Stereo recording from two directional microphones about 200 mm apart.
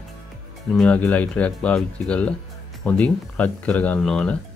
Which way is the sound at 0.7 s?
5° left (ahead or behind).